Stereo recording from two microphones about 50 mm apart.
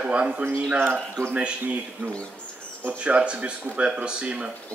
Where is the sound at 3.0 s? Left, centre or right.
Right.